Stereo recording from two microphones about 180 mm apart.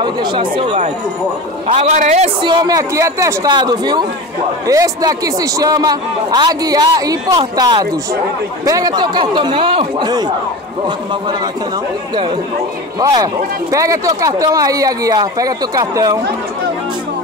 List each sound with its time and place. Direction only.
0.0 s a man's voice: 25° right (ahead or behind)
2.4 s a man's voice: 25° right (ahead or behind)
13.0 s a man's voice: 20° right (ahead or behind)